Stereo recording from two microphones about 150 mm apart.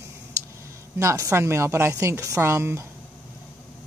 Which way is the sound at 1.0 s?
20° right (ahead or behind).